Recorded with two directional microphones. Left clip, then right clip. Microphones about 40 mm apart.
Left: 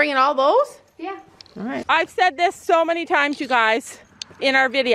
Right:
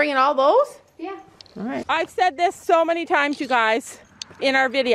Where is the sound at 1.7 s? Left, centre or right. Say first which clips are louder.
Left 3 dB; left.